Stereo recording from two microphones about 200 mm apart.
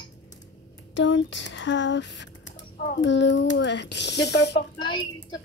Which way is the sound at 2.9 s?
65° left (ahead or behind).